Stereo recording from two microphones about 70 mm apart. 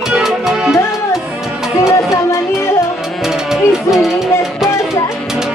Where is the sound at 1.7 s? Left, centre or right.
Left.